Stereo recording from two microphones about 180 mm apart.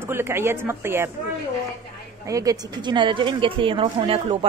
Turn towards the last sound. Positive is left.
turn(degrees=-30)  # may be behind; listen again after turning